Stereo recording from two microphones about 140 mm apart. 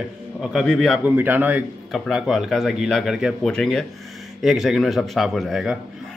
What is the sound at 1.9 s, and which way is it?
A man's voice, centre (ahead or behind).